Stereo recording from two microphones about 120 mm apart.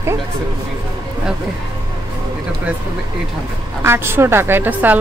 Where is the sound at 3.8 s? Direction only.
20° right (ahead or behind).